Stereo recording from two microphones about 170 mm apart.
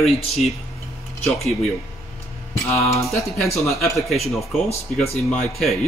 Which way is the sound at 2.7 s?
15° left (ahead or behind).